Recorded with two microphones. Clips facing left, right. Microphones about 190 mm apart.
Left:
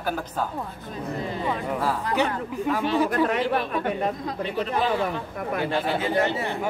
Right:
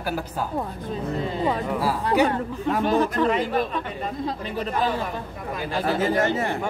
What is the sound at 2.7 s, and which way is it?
Speech, 45° right (ahead or behind).